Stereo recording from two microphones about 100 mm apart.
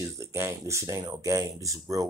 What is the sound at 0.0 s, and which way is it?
Speech, 25° right (ahead or behind).